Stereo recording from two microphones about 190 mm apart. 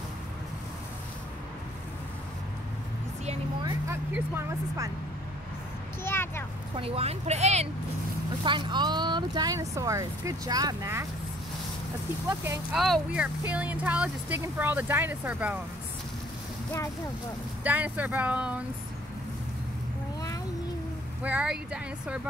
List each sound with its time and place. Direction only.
4.1 s speech: 15° right (ahead or behind)
6.0 s a child's voice: 10° left (ahead or behind)
6.8 s speech: 30° right (ahead or behind)
8.5 s speech: 25° right (ahead or behind)
12.7 s speech: centre (ahead or behind)
17.6 s speech: 10° right (ahead or behind)
21.2 s speech: 5° right (ahead or behind)